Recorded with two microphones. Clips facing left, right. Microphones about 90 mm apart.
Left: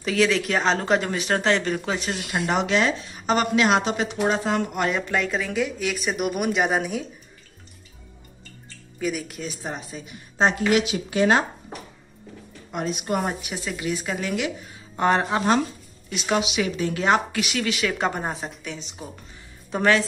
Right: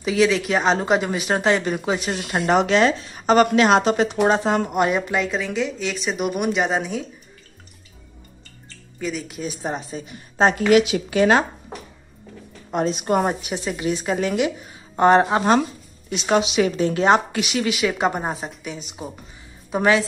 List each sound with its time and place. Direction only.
0.0 s speech: 5° right (ahead or behind)
2.3 s a woman's voice: 40° right (ahead or behind)
4.3 s speech: 25° right (ahead or behind)
5.2 s speech: centre (ahead or behind)
9.0 s speech: 5° left (ahead or behind)
9.6 s a woman's voice: 35° right (ahead or behind)
10.7 s speech: 80° right
12.7 s a woman's voice: 30° right (ahead or behind)
13.3 s a woman's voice: 25° right (ahead or behind)
16.3 s speech: 35° right (ahead or behind); by 20.1 s 5° right (ahead or behind)